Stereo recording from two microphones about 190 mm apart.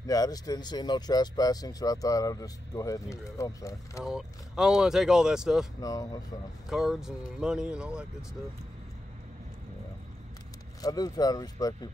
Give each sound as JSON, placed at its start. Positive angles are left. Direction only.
{"t": 0.0, "sound": "speech", "side_deg": 20}
{"t": 4.0, "sound": "speech", "side_deg": 0}
{"t": 5.8, "sound": "speech", "side_deg": 20}
{"t": 6.7, "sound": "speech", "side_deg": -5}
{"t": 10.8, "sound": "speech", "side_deg": 20}